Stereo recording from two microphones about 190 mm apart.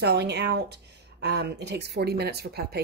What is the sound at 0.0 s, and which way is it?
Speech, 60° right (ahead or behind).